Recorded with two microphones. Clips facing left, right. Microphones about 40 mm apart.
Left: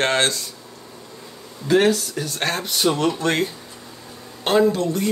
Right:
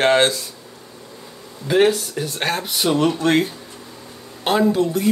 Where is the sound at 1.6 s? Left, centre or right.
Centre.